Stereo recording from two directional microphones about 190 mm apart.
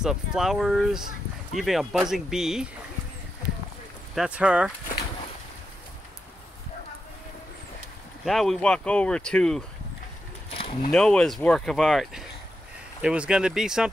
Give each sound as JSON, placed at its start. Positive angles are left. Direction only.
{"t": 0.0, "sound": "speech", "side_deg": -5}
{"t": 4.1, "sound": "speech", "side_deg": -5}
{"t": 8.3, "sound": "speech", "side_deg": 0}
{"t": 10.5, "sound": "a sound", "side_deg": 30}
{"t": 10.9, "sound": "speech", "side_deg": 5}